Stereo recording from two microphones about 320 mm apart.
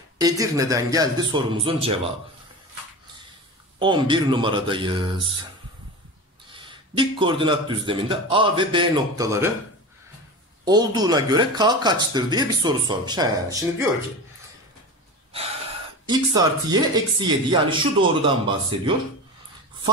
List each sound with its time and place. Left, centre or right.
0.2 s speech: centre
3.8 s speech: centre
7.0 s speech: centre
10.6 s speech: centre
16.1 s speech: centre